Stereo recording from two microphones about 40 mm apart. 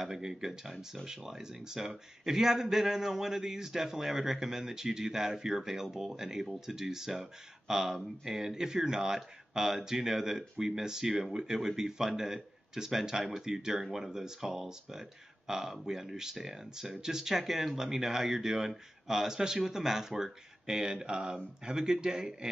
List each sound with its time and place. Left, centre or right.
0.0 s speech: centre